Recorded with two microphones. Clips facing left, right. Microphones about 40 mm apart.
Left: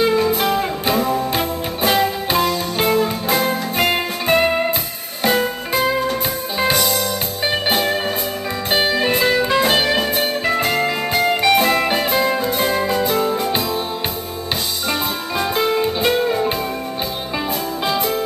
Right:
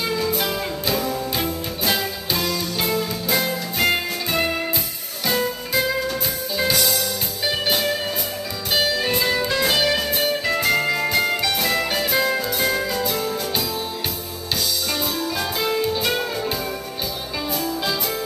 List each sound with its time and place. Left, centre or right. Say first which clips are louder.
0.0 s music: left 7 dB; left
14.9 s music: left 3 dB; left
17.8 s music: left 5 dB; left